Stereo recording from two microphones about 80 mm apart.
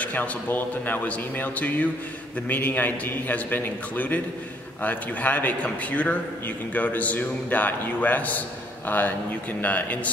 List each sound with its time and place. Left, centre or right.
0.0 s a man's voice: left